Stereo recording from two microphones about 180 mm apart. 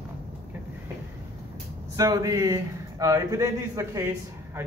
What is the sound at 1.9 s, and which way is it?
A man's voice, 20° right (ahead or behind).